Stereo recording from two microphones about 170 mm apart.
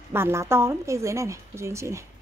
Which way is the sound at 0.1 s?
15° right (ahead or behind).